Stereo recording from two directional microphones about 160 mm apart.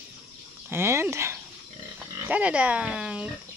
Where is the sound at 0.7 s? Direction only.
15° right (ahead or behind).